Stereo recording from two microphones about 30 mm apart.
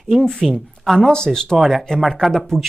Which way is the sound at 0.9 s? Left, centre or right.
Left.